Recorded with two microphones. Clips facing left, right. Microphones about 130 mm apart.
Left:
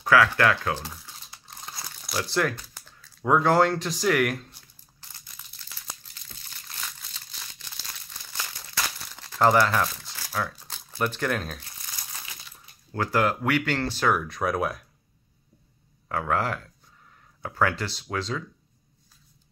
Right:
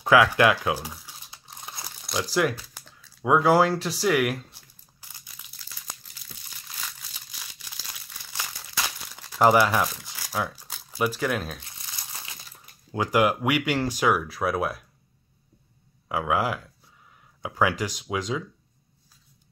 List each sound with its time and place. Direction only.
0.0 s crumpling: 20° right (ahead or behind)
2.0 s crumpling: centre (ahead or behind)
2.3 s speech: 5° right (ahead or behind)
3.0 s a sound: 5° right (ahead or behind)
5.2 s crushing: 15° right (ahead or behind)
7.0 s crumpling: 10° right (ahead or behind)
12.9 s speech: 15° right (ahead or behind)
16.1 s speech: 5° right (ahead or behind)